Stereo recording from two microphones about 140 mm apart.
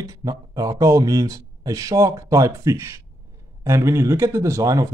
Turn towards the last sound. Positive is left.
turn(degrees=-20)  # may be behind; listen again after turning